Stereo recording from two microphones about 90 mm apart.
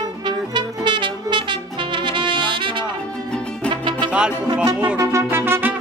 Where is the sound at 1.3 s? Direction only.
65° right (ahead or behind).